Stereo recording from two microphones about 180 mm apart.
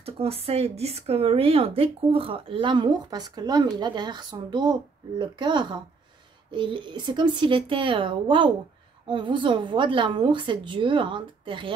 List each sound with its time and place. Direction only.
0.0 s speech: 35° right (ahead or behind)